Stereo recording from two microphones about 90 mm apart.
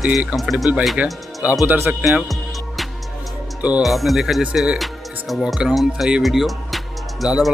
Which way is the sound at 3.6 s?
15° right (ahead or behind).